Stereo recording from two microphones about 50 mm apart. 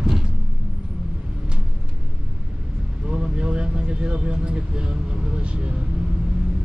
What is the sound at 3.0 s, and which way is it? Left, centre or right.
Vehicle, right.